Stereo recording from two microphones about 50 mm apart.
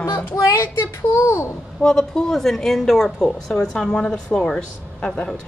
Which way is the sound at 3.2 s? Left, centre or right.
Centre.